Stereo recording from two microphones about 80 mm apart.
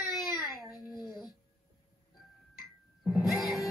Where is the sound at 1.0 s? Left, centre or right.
Left.